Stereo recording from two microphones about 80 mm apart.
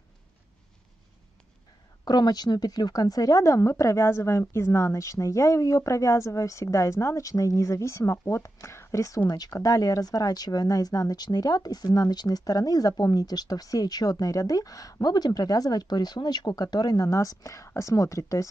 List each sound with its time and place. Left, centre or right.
2.0 s speech: left